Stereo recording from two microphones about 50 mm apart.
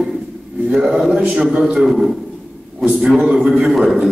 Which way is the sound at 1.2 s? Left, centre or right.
Centre.